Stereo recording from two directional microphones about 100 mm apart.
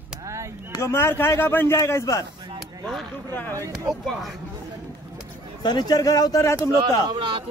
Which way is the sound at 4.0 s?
Centre (ahead or behind).